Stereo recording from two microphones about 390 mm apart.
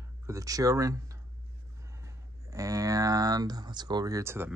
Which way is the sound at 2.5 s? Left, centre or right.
Centre.